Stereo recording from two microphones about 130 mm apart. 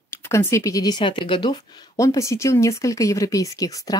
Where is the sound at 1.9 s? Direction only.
25° left (ahead or behind).